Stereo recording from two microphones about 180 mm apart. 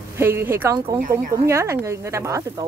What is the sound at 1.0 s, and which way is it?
Speech, 50° right (ahead or behind).